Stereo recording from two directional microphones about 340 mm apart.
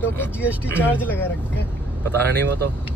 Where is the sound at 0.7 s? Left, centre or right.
Centre.